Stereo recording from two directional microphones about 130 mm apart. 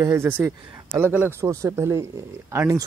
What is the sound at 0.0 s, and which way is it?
Speech, 20° right (ahead or behind).